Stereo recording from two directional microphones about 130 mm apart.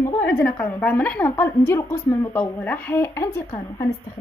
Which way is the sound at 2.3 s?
15° left (ahead or behind).